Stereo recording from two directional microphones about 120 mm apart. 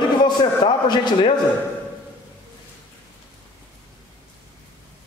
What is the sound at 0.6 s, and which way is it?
Speech, 40° left (ahead or behind).